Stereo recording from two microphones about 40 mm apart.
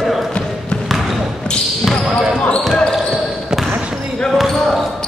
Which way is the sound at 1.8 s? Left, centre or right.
Centre.